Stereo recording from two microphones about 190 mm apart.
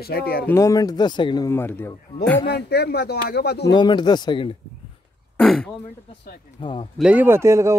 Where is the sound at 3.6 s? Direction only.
25° left (ahead or behind).